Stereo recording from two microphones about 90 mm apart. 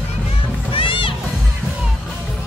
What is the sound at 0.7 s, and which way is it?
Music, 75° left (ahead or behind).